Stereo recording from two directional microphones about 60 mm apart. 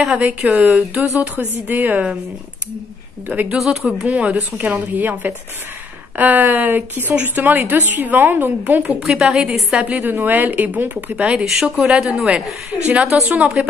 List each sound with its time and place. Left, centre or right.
0.2 s speech: right
3.3 s speech: right
3.5 s speech: centre
4.0 s a woman's voice: right
9.0 s a woman's voice: centre
10.0 s a woman's voice: right
11.1 s speech: centre